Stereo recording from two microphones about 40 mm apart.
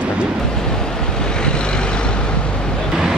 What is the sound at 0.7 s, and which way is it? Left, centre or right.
Vehicle, centre.